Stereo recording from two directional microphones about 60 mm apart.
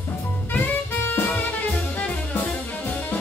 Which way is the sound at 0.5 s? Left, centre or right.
Left.